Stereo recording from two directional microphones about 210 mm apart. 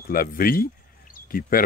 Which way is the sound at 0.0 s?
45° left (ahead or behind).